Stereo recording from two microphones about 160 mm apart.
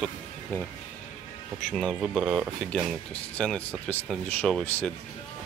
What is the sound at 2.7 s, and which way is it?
Speech, 5° left (ahead or behind).